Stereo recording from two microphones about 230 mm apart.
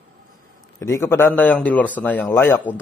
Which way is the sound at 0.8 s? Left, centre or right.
Centre.